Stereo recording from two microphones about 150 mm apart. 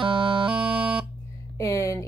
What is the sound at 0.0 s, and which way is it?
Music, 35° right (ahead or behind).